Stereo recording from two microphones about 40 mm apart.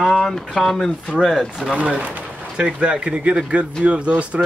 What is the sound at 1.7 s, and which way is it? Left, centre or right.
Speech, right.